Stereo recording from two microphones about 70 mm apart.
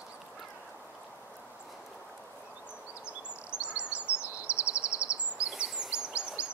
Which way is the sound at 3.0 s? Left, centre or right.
Centre.